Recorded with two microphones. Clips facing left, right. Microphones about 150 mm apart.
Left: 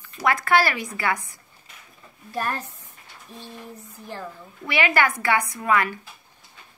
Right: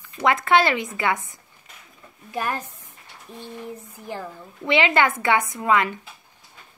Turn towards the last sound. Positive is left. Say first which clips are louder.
# right 2 dB
turn(degrees=-20)  # may be behind; listen again after turning